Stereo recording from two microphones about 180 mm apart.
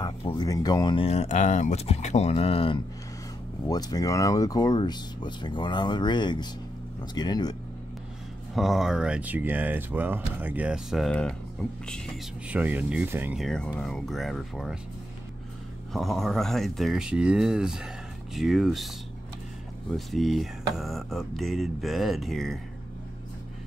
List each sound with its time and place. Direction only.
0.0 s speech: 25° left (ahead or behind)
3.6 s speech: 20° left (ahead or behind)
8.5 s speech: centre (ahead or behind)
12.4 s speech: 10° right (ahead or behind)
13.4 s speech: 5° left (ahead or behind)
15.9 s speech: centre (ahead or behind)
19.9 s speech: centre (ahead or behind)